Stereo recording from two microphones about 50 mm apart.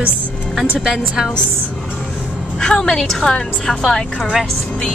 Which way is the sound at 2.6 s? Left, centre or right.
Centre.